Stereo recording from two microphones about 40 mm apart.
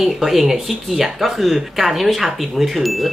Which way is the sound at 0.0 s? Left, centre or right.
Centre.